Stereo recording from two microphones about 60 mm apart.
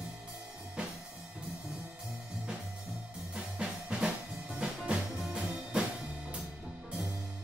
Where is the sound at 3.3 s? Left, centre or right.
Centre.